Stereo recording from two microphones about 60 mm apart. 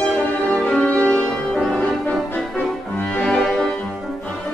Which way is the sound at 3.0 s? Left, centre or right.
Left.